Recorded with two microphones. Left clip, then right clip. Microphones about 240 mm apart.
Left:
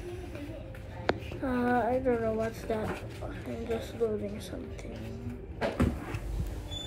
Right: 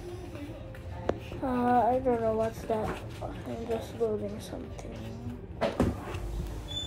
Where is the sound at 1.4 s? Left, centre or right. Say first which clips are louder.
Right 5 dB; right.